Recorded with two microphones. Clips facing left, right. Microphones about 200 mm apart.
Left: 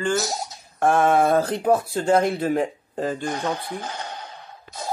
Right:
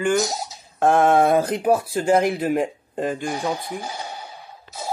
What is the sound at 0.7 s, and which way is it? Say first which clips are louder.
Mantra: right 2 dB; 15° right (ahead or behind).